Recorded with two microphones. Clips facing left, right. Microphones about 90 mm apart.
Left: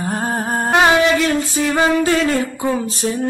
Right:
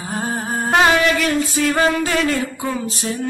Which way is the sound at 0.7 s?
25° left (ahead or behind).